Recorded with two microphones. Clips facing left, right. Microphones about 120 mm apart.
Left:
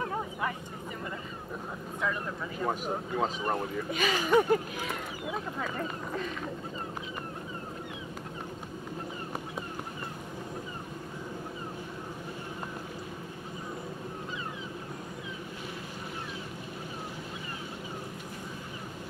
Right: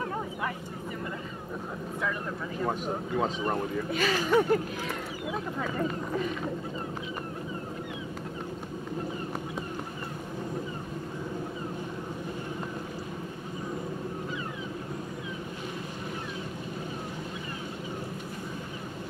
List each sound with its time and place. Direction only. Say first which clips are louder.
2.6 s speech: right 1 dB; centre (ahead or behind)
3.9 s speech: even; 15° left (ahead or behind)
5.3 s speech: right 2 dB; centre (ahead or behind)